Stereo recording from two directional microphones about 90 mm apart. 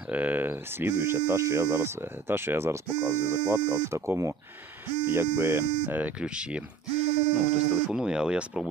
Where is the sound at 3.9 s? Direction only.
30° right (ahead or behind).